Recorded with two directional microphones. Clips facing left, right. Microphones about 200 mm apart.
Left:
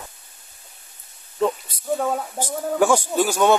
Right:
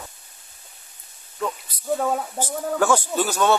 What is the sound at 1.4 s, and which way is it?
Snake, 30° left (ahead or behind).